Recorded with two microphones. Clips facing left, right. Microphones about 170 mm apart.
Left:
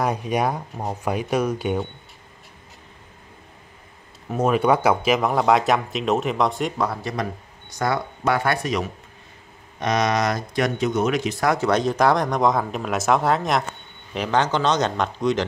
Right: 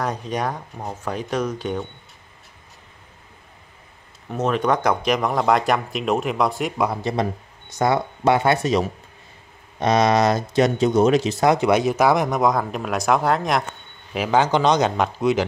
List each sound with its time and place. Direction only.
0.0 s speech: 10° left (ahead or behind)
4.3 s speech: 10° left (ahead or behind)
6.9 s speech: 25° right (ahead or behind); by 15.4 s 10° right (ahead or behind)